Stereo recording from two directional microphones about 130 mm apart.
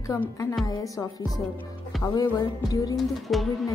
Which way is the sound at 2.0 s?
35° left (ahead or behind).